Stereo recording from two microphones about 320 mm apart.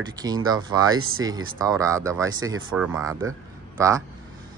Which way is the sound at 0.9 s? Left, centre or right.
Right.